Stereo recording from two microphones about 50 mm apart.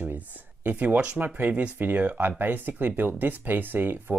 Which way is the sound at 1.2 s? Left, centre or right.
Right.